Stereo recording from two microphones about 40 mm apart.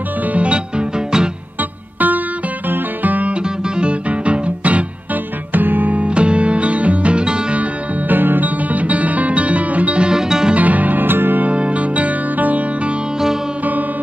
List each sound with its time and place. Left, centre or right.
0.3 s music: right
1.6 s music: right
3.7 s music: right
5.5 s music: right
6.0 s music: right
8.1 s music: right
10.0 s music: centre
10.5 s music: right
11.4 s music: right